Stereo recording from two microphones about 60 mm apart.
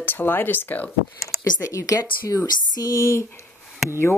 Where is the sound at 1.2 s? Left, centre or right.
Left.